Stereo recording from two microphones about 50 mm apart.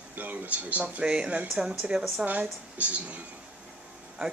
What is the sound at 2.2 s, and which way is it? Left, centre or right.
Speech, right.